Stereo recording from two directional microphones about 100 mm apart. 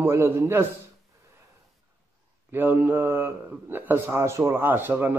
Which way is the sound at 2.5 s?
20° right (ahead or behind).